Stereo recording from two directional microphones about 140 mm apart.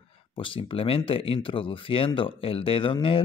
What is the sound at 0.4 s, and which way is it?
Speech, 40° left (ahead or behind).